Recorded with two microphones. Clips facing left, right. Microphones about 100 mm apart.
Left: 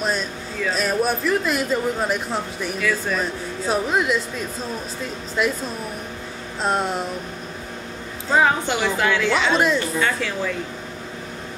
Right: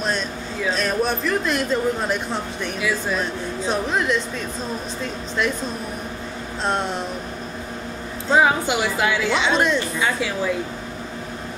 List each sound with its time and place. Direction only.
0.7 s speech: 5° left (ahead or behind)
2.8 s speech: 10° right (ahead or behind)
3.2 s speech: 5° left (ahead or behind)
5.4 s speech: 5° left (ahead or behind)
6.6 s speech: 5° left (ahead or behind)
8.4 s speech: 10° right (ahead or behind)
9.9 s speech: 10° right (ahead or behind)